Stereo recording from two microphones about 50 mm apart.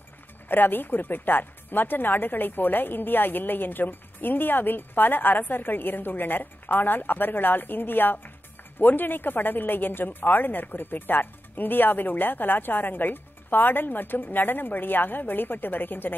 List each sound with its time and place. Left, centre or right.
0.5 s speech: left